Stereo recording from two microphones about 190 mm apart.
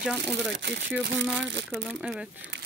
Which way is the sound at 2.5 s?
65° right (ahead or behind).